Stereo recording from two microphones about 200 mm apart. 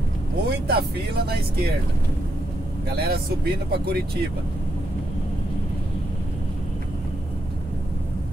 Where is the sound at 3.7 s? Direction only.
50° right (ahead or behind).